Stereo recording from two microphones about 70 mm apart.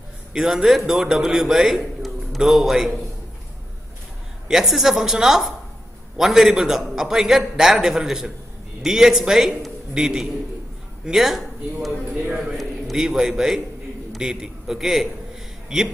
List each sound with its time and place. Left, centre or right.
0.3 s a man's voice: centre
4.5 s a man's voice: centre
12.1 s a man's voice: centre